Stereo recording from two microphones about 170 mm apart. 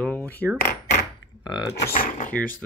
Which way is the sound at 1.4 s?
25° left (ahead or behind).